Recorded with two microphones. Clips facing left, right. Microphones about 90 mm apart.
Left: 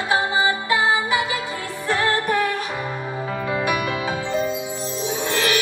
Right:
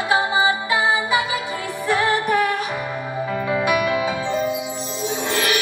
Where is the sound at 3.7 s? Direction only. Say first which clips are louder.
Right 4 dB; 30° left (ahead or behind).